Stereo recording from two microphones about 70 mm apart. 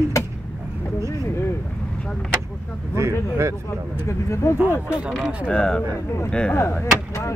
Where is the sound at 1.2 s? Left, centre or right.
Left.